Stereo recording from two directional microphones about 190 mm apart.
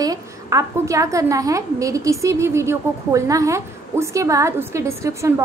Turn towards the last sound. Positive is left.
turn(degrees=-15)  # may be behind; listen again after turning